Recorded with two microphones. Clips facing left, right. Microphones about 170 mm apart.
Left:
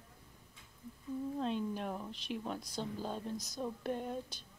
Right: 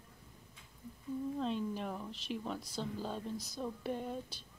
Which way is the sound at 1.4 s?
Centre (ahead or behind).